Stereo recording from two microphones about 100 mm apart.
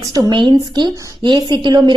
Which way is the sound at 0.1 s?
50° right (ahead or behind).